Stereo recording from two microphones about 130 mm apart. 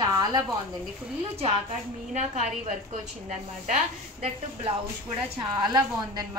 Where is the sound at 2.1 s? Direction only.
65° right (ahead or behind).